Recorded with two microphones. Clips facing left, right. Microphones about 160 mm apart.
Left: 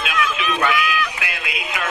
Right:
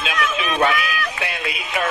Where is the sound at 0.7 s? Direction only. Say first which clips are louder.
Left 2 dB; 40° right (ahead or behind).